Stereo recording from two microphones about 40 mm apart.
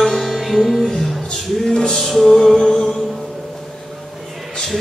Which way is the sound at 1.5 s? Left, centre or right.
Centre.